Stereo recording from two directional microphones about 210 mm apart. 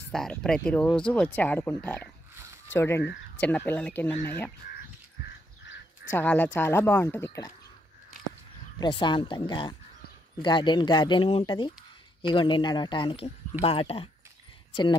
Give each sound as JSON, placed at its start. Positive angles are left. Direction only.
{"t": 0.1, "sound": "speech", "side_deg": 0}
{"t": 6.1, "sound": "speech", "side_deg": 10}
{"t": 8.7, "sound": "speech", "side_deg": 20}